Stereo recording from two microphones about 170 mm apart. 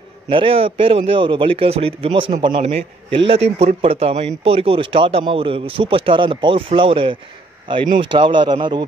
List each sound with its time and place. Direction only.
0.3 s a man's voice: 30° right (ahead or behind)